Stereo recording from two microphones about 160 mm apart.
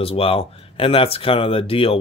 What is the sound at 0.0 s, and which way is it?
Speech, 35° left (ahead or behind).